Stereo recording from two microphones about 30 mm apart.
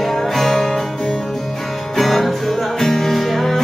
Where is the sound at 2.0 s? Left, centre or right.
Centre.